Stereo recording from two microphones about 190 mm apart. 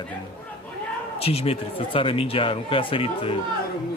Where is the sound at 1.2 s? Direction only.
30° left (ahead or behind).